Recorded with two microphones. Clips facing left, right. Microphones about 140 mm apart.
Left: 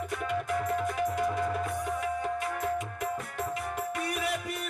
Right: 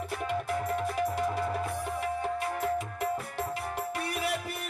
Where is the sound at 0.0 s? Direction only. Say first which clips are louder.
Even; 30° right (ahead or behind).